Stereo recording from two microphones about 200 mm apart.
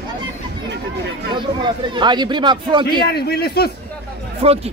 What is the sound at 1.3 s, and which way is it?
A man's voice, 25° right (ahead or behind).